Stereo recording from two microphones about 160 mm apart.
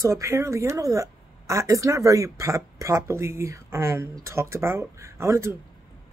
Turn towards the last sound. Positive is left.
turn(degrees=-15)  # may be behind; listen again after turning